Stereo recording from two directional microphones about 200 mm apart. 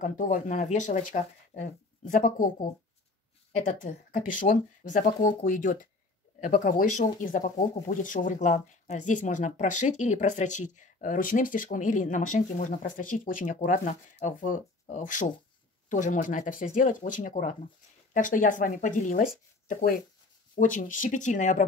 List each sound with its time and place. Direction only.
0.0 s speech: 40° left (ahead or behind)